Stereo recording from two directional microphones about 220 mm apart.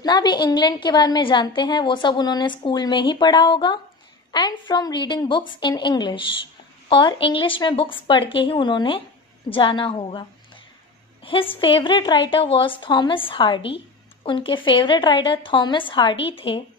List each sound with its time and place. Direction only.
0.0 s a woman's voice: 20° left (ahead or behind)
11.2 s a woman's voice: 25° left (ahead or behind)